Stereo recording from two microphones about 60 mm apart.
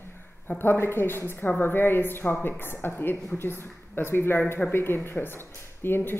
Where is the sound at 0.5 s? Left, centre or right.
Left.